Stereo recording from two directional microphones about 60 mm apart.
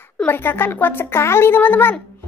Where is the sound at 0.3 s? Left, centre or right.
Left.